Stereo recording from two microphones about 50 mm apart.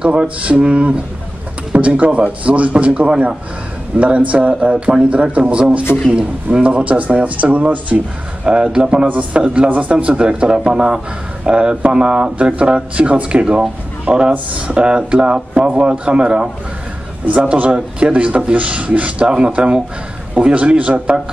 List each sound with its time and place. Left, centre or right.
0.0 s speech: right
8.5 s a man's voice: centre
9.0 s a man's voice: right
17.6 s speech: right